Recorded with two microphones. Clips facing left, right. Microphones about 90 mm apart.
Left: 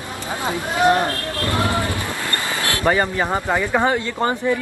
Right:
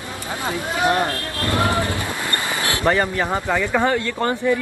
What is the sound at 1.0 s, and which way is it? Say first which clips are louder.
Speech: left 1 dB; 20° right (ahead or behind).